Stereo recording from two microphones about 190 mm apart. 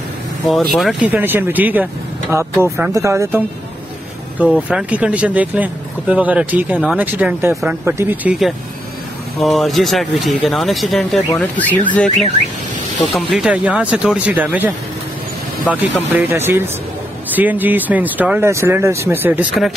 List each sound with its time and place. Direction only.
0.7 s speech: 5° right (ahead or behind)